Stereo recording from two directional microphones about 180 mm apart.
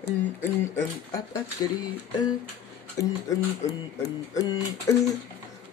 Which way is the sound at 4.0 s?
20° left (ahead or behind).